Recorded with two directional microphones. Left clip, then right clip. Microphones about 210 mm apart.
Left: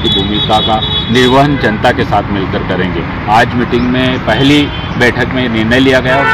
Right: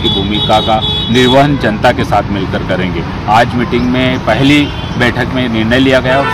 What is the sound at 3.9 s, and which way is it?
Speech, 30° right (ahead or behind).